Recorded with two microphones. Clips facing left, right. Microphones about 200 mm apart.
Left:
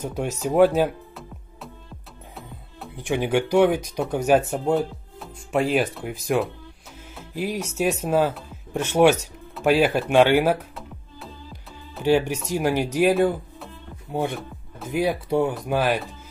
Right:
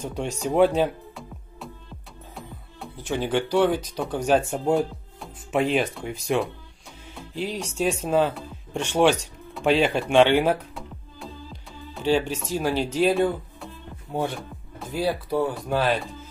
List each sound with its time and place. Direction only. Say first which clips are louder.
0.0 s speech: left 2 dB; 5° left (ahead or behind)
3.0 s speech: left 3 dB; 15° left (ahead or behind)
7.2 s music: left 2 dB; 5° left (ahead or behind)
12.0 s speech: left 3 dB; 10° left (ahead or behind)